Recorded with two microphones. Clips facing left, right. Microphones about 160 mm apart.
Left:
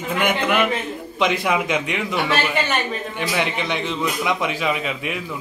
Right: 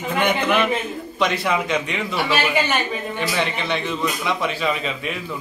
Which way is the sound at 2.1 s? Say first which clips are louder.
Right 1 dB; 5° right (ahead or behind).